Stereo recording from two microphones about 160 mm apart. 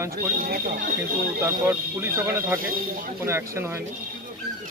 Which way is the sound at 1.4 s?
15° right (ahead or behind).